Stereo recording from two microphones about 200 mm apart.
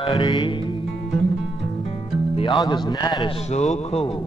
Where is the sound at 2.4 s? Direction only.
20° left (ahead or behind).